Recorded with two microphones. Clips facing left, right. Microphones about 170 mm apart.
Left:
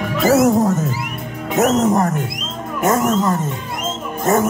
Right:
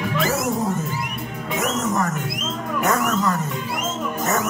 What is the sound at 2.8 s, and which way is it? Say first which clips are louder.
Roaring cats: left 5 dB; 25° left (ahead or behind).